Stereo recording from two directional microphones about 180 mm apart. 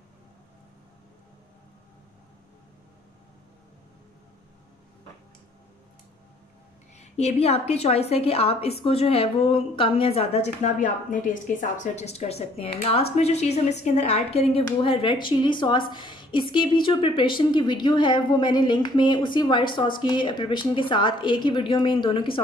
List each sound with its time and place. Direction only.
7.0 s a woman's voice: 35° left (ahead or behind)